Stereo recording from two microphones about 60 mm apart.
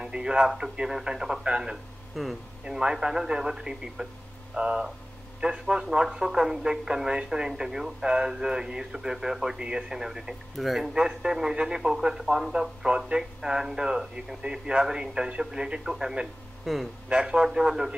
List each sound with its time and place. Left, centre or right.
0.0 s speech: centre
2.1 s speech: centre
2.6 s speech: centre
17.1 s speech: centre